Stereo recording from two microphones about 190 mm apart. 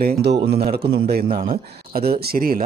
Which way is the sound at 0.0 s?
55° right (ahead or behind).